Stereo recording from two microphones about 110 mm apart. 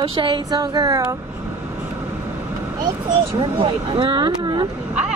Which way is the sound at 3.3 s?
45° right (ahead or behind).